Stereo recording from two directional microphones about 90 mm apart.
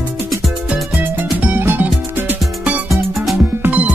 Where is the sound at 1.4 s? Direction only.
20° right (ahead or behind).